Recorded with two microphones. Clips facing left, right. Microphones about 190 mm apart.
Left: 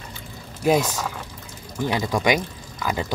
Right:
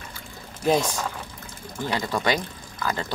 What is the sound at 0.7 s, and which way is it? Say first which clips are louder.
Speech: left 2 dB; 10° left (ahead or behind).